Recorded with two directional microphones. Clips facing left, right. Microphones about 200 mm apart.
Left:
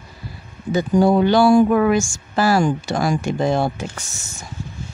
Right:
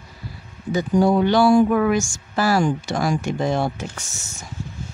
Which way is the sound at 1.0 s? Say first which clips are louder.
Left 2 dB; 30° left (ahead or behind).